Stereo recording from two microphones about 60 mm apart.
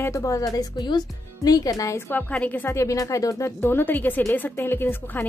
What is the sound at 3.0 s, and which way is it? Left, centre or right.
Speech, left.